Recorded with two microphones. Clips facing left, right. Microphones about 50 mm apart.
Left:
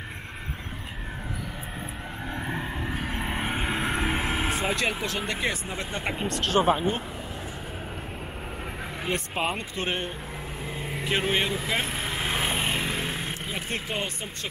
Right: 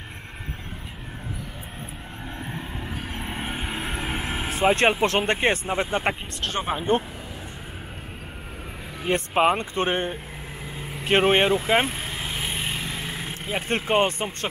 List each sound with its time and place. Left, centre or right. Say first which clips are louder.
2.3 s vehicle: left 3 dB; centre
4.6 s speech: right 8 dB; right
6.4 s speech: left 4 dB; centre
9.1 s speech: right 9 dB; right
11.1 s speech: right 8 dB; right
11.9 s vehicle: left 2 dB; centre
12.2 s vehicle: left 4 dB; left
13.5 s speech: right 11 dB; right